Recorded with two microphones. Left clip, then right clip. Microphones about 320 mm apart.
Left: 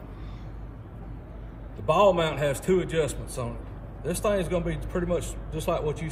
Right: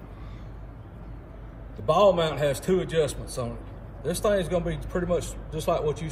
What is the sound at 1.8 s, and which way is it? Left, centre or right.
A man's voice, centre.